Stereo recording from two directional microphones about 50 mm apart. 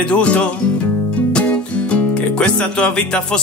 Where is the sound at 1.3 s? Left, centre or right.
Left.